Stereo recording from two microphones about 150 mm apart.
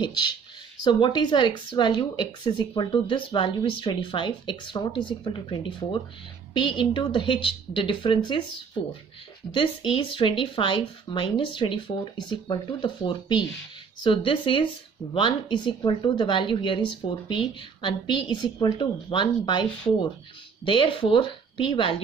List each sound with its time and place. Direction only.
0.0 s speech: 30° left (ahead or behind)